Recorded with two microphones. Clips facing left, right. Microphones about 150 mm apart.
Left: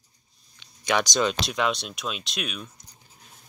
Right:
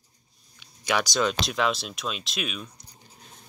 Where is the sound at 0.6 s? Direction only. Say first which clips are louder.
Left 2 dB; 5° right (ahead or behind).